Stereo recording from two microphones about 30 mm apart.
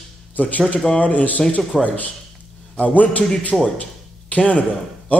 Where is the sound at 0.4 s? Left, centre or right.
Left.